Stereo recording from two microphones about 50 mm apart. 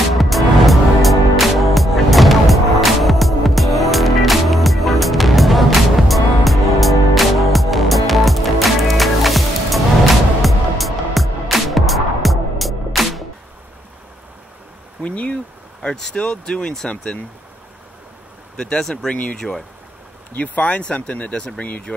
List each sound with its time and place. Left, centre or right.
0.1 s music: centre
15.0 s a sound: left
16.0 s speech: centre
18.6 s speech: centre
20.3 s speech: left